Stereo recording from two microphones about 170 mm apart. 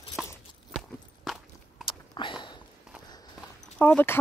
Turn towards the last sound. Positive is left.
turn(degrees=10)  # may be behind; listen again after turning